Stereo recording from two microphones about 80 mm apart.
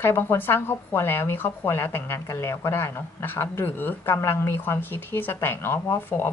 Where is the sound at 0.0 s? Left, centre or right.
Left.